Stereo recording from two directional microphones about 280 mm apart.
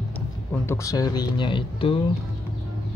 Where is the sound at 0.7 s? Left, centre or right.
Centre.